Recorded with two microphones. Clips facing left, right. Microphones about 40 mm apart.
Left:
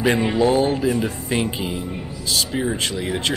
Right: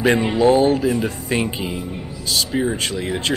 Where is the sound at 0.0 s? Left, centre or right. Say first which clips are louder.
Right 2 dB; centre.